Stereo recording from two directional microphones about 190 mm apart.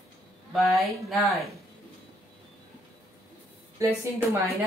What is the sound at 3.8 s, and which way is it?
Speech, 15° right (ahead or behind).